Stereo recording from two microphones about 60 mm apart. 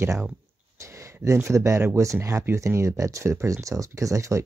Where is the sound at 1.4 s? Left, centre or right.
Right.